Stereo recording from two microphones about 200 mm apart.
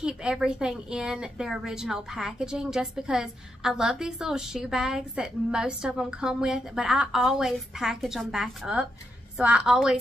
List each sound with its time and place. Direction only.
0.0 s speech: 5° right (ahead or behind)